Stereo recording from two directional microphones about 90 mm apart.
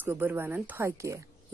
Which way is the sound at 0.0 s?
20° right (ahead or behind).